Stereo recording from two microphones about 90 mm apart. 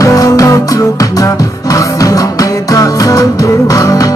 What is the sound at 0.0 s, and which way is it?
Music, 40° left (ahead or behind).